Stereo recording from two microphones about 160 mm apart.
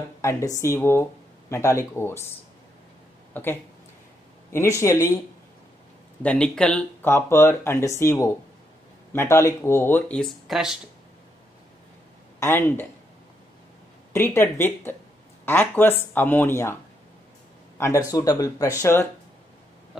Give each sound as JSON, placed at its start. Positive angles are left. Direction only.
{"t": 0.2, "sound": "speech", "side_deg": 15}
{"t": 3.3, "sound": "speech", "side_deg": 10}
{"t": 6.2, "sound": "speech", "side_deg": 5}
{"t": 12.4, "sound": "speech", "side_deg": 15}
{"t": 14.1, "sound": "speech", "side_deg": 15}
{"t": 17.7, "sound": "speech", "side_deg": 20}